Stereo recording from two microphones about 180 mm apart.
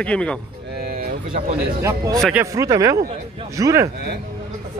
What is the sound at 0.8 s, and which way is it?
Vehicle, 60° right (ahead or behind).